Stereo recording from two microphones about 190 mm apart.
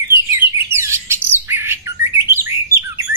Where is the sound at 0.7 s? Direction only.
15° right (ahead or behind).